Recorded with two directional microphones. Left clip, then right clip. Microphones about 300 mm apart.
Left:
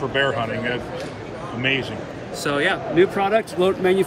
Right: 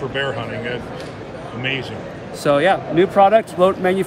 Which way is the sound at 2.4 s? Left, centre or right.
Right.